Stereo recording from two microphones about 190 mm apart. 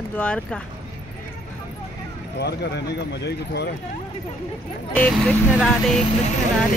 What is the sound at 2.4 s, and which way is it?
Speech, 60° left (ahead or behind).